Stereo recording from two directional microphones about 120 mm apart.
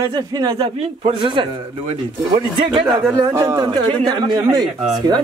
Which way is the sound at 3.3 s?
30° right (ahead or behind).